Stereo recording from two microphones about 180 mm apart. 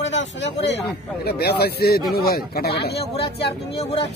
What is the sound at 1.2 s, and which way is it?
A man's voice, 60° left (ahead or behind).